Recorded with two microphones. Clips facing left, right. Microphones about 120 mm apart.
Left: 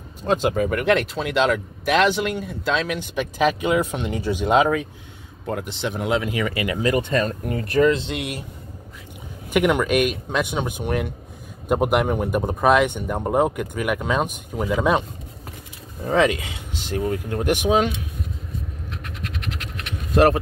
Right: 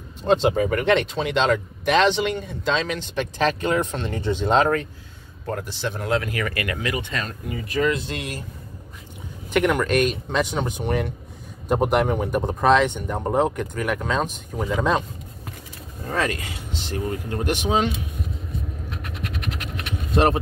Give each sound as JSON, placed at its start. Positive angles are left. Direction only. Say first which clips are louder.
{"t": 0.3, "sound": "speech", "louder": "right 1 dB", "side_deg": 0}
{"t": 6.8, "sound": "speech", "louder": "left 7 dB", "side_deg": 35}
{"t": 7.4, "sound": "speech", "louder": "left 5 dB", "side_deg": 55}
{"t": 7.8, "sound": "speech", "louder": "left 4 dB", "side_deg": 25}
{"t": 9.5, "sound": "speech", "louder": "left 1 dB", "side_deg": 5}
{"t": 16.1, "sound": "speech", "louder": "left 6 dB", "side_deg": 15}